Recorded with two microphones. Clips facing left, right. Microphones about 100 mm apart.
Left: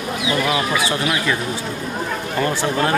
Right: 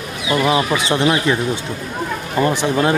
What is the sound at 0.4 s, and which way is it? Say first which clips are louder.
Speech: right 5 dB; 25° right (ahead or behind).